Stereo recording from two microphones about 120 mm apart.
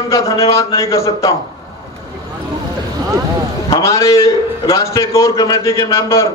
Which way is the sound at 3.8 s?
25° left (ahead or behind).